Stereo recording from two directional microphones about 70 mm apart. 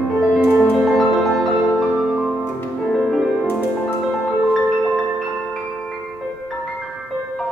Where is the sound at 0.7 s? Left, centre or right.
Centre.